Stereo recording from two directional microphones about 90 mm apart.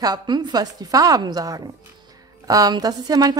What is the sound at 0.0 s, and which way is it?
A woman's voice, 50° right (ahead or behind).